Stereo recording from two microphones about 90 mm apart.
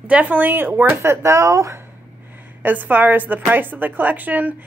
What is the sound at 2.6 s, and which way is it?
Speech, 20° right (ahead or behind).